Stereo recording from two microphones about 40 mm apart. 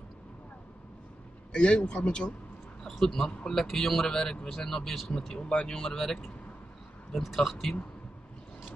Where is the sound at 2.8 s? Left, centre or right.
Centre.